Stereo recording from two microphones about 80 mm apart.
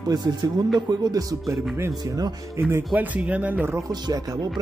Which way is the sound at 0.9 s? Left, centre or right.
Right.